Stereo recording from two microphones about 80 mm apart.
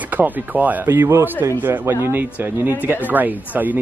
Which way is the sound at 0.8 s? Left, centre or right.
Right.